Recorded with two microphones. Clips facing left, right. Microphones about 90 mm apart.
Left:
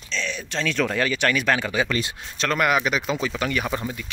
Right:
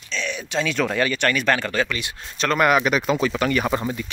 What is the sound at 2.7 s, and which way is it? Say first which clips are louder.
Speech: right 3 dB; 55° right (ahead or behind).